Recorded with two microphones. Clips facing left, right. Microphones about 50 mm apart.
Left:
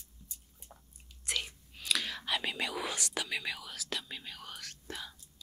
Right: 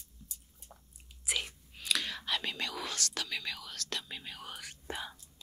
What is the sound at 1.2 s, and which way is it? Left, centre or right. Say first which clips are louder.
Speech: right 1 dB; centre.